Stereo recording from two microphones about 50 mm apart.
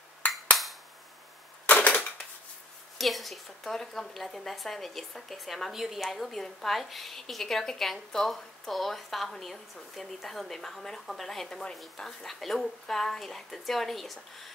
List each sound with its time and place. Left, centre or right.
1.7 s typewriter: left
3.0 s a woman's voice: centre